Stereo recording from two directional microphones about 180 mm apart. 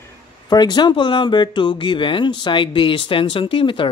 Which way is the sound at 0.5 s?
25° left (ahead or behind).